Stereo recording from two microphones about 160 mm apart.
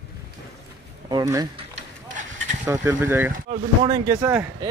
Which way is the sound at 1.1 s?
20° right (ahead or behind).